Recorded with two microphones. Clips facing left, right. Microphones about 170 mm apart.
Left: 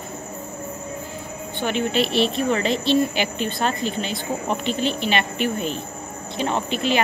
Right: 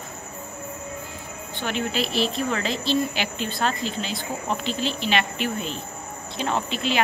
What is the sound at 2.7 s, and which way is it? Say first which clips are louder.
Speech: left 4 dB; 55° left (ahead or behind).